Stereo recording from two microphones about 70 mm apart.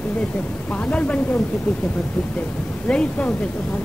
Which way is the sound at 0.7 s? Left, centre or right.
Centre.